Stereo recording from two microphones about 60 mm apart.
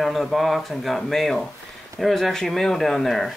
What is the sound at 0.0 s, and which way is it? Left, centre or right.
Speech, centre.